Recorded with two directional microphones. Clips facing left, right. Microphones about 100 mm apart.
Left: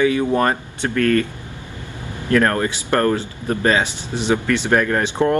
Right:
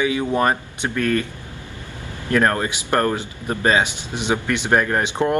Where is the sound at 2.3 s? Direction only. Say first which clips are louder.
Left 2 dB; 20° right (ahead or behind).